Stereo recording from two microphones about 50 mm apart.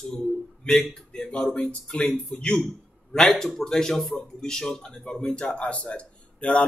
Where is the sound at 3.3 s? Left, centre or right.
Centre.